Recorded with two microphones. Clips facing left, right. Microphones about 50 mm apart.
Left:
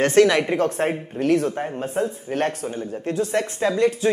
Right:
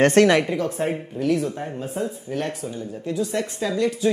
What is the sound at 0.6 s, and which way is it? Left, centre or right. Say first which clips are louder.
Speech: left 3 dB; left.